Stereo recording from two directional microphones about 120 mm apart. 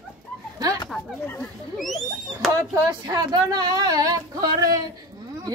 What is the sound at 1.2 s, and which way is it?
Speech, 20° left (ahead or behind).